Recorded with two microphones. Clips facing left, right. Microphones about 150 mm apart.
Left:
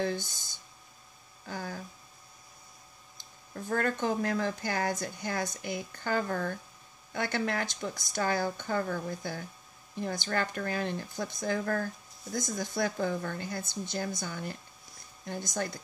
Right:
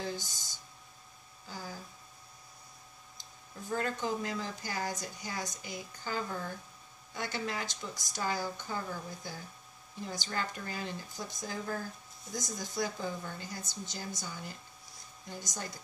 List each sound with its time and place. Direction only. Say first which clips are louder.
0.0 s speech: left 7 dB; 60° left (ahead or behind)
3.2 s a sound: left 6 dB; 60° left (ahead or behind)
4.0 s speech: left 6 dB; 60° left (ahead or behind)